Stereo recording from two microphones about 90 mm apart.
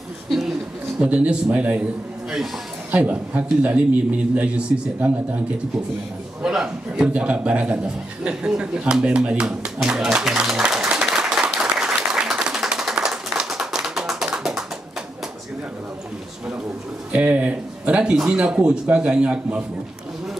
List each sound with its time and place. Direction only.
0.3 s a sound: 5° right (ahead or behind)
1.0 s speech: 15° right (ahead or behind)
2.9 s speech: 15° right (ahead or behind)
6.4 s chuckle: 10° right (ahead or behind)
17.1 s speech: 15° right (ahead or behind)